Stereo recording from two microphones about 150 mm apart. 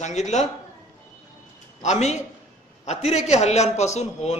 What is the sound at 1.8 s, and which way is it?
A man's voice, 50° left (ahead or behind).